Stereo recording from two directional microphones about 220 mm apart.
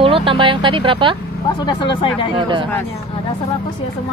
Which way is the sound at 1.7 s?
20° left (ahead or behind).